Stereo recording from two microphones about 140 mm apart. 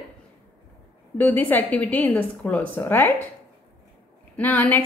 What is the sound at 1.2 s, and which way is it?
A woman's voice, 15° left (ahead or behind).